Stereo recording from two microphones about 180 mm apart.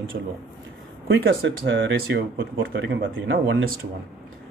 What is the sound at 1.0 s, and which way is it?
Speech, 90° right.